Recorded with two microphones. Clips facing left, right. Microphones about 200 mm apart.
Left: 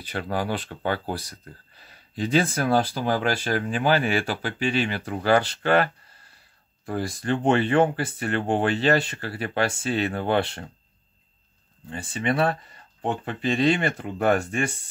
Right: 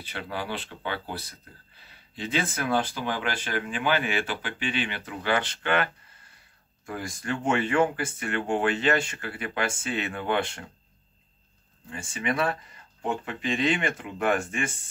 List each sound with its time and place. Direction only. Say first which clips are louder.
0.1 s speech: left 6 dB; 45° left (ahead or behind)
6.9 s speech: left 6 dB; 35° left (ahead or behind)
11.9 s speech: left 4 dB; 35° left (ahead or behind)